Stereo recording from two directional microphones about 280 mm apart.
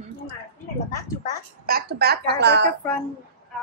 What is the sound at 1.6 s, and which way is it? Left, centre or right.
A woman's voice, right.